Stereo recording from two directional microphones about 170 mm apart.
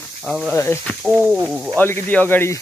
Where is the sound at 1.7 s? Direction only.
10° left (ahead or behind).